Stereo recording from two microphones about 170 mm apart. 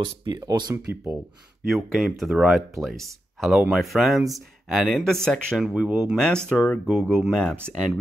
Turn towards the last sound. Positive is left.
turn(degrees=0)  # may be behind; listen again after turning